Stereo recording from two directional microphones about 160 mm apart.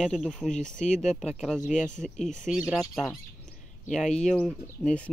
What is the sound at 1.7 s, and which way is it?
Speech, 50° left (ahead or behind).